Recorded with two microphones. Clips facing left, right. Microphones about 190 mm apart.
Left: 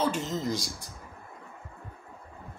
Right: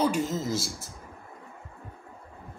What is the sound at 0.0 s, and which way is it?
Speech, 10° right (ahead or behind).